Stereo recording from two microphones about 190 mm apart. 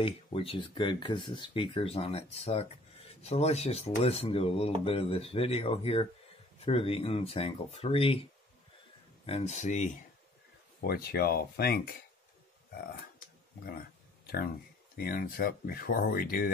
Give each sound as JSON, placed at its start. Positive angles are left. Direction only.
{"t": 0.0, "sound": "speech", "side_deg": 30}
{"t": 9.2, "sound": "speech", "side_deg": 35}
{"t": 10.8, "sound": "speech", "side_deg": 55}
{"t": 14.2, "sound": "speech", "side_deg": 55}